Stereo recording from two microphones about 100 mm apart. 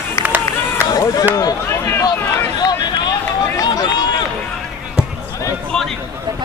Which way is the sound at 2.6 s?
45° left (ahead or behind).